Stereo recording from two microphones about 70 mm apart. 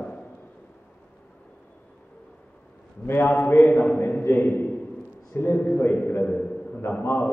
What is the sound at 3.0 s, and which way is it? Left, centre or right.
A man's voice, left.